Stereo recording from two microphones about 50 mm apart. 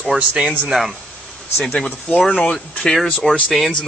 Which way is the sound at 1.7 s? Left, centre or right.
Left.